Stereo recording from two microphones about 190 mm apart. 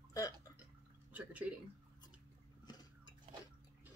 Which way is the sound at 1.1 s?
10° right (ahead or behind).